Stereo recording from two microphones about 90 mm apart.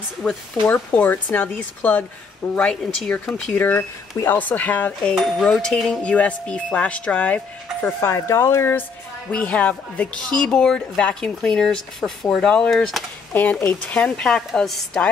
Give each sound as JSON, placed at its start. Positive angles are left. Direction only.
{"t": 0.2, "sound": "speech", "side_deg": 20}
{"t": 2.7, "sound": "speech", "side_deg": 5}
{"t": 3.6, "sound": "speech", "side_deg": 25}
{"t": 5.1, "sound": "speech", "side_deg": 5}
{"t": 8.0, "sound": "speech", "side_deg": 30}
{"t": 9.3, "sound": "speech", "side_deg": 15}
{"t": 13.3, "sound": "speech", "side_deg": 20}